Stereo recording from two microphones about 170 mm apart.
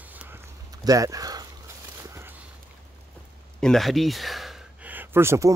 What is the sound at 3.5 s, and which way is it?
Speech, 5° left (ahead or behind).